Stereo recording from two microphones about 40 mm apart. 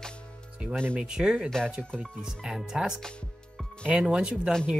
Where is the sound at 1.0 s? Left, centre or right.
Centre.